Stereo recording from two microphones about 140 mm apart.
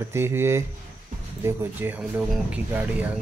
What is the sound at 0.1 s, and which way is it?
Speech, 20° right (ahead or behind).